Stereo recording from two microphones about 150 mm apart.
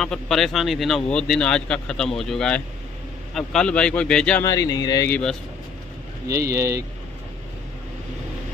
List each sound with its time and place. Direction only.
0.0 s speech: centre (ahead or behind)
4.4 s speech: 25° left (ahead or behind)
5.0 s speech: 5° left (ahead or behind)
6.2 s speech: 20° right (ahead or behind)